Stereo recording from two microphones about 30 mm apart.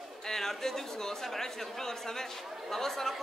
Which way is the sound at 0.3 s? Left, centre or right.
Centre.